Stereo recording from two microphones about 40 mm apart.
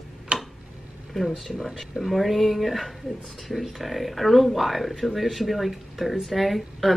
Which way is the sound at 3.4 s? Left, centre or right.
Centre.